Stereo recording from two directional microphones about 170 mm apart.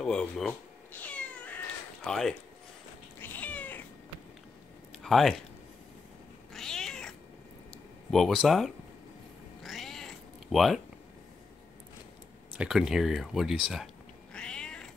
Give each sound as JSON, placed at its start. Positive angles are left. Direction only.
{"t": 0.0, "sound": "speech", "side_deg": 5}
{"t": 1.0, "sound": "cat", "side_deg": 10}
{"t": 2.0, "sound": "speech", "side_deg": 5}
{"t": 3.2, "sound": "cat", "side_deg": 10}
{"t": 4.9, "sound": "a sound", "side_deg": 0}
{"t": 6.5, "sound": "cat", "side_deg": 5}
{"t": 7.7, "sound": "a sound", "side_deg": 0}
{"t": 9.6, "sound": "cat", "side_deg": 0}
{"t": 12.5, "sound": "speech", "side_deg": -5}
{"t": 14.3, "sound": "cat", "side_deg": 5}